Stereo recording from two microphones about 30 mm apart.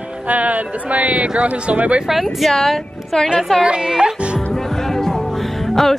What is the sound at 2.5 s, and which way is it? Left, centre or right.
Speech, centre.